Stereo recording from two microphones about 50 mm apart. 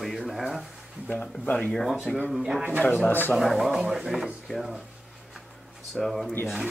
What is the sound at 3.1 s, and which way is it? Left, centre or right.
Speech, left.